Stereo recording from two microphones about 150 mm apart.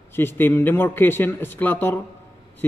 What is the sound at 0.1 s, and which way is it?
A man's voice, 15° left (ahead or behind).